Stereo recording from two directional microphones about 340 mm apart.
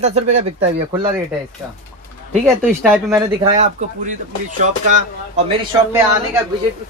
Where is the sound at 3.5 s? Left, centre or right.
Right.